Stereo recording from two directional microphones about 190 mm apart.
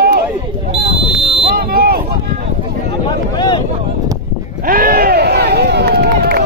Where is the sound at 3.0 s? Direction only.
25° left (ahead or behind).